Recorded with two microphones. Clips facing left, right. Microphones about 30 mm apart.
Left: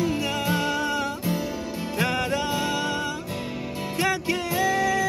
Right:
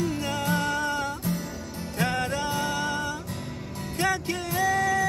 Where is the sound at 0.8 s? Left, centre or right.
Centre.